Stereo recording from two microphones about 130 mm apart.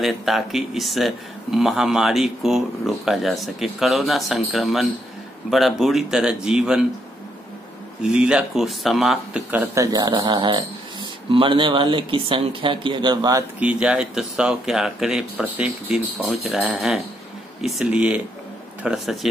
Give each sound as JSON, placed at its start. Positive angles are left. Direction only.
{"t": 0.0, "sound": "speech", "side_deg": 0}
{"t": 8.0, "sound": "speech", "side_deg": -5}
{"t": 9.8, "sound": "speech", "side_deg": -30}
{"t": 13.6, "sound": "speech", "side_deg": -10}